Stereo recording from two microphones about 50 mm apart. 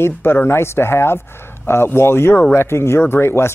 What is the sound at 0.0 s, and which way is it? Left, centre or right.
Speech, left.